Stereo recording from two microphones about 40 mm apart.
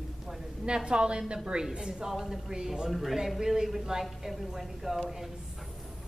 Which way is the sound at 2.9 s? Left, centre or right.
Centre.